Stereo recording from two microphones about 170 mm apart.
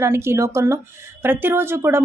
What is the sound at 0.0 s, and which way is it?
A woman's voice, 15° right (ahead or behind).